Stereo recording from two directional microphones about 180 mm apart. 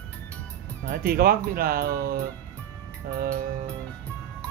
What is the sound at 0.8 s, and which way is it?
Speech, 55° right (ahead or behind).